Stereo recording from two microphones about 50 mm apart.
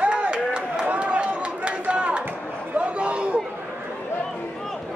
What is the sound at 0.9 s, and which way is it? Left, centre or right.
Run, right.